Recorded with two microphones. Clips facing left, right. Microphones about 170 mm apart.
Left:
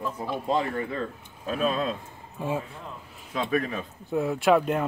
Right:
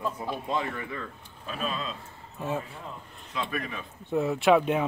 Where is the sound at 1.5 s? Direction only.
50° left (ahead or behind).